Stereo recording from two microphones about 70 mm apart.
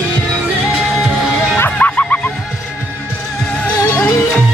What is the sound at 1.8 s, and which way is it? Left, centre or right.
Music, left.